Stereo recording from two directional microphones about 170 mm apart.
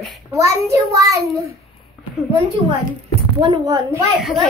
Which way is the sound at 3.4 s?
25° right (ahead or behind).